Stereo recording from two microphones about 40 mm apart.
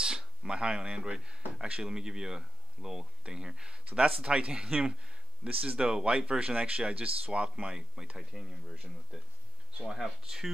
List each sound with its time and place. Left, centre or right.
0.0 s speech: centre
9.8 s speech: centre